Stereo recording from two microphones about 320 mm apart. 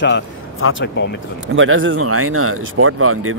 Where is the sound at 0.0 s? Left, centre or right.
Left.